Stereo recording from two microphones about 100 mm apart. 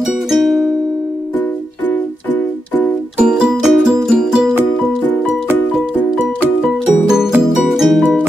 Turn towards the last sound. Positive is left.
turn(degrees=0)  # may be behind; listen again after turning